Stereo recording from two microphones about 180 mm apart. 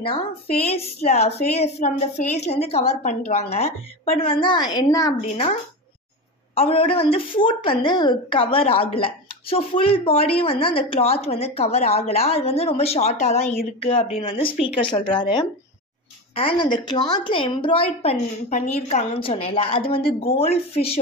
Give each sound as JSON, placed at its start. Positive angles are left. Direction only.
{"t": 0.7, "sound": "speech", "side_deg": 35}
{"t": 5.2, "sound": "a woman's voice", "side_deg": 40}